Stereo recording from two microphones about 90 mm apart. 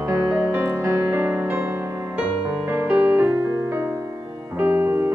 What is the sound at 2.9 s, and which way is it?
Music, 15° right (ahead or behind).